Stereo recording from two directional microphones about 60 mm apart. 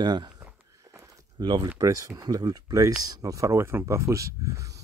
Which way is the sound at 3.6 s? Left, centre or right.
Right.